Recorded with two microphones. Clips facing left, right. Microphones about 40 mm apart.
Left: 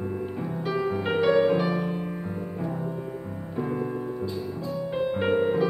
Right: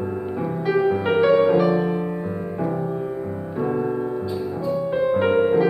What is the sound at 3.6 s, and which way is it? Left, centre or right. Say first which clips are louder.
Music: right 7 dB; centre.